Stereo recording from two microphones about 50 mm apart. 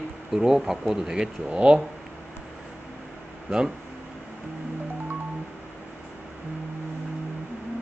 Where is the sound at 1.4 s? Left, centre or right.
Right.